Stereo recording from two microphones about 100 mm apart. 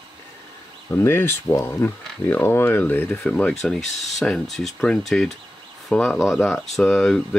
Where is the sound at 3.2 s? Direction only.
10° left (ahead or behind).